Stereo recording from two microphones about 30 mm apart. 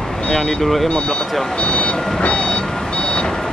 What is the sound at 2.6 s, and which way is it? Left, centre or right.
Car alarm, centre.